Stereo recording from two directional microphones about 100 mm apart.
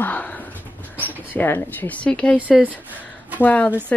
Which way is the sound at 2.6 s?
15° right (ahead or behind).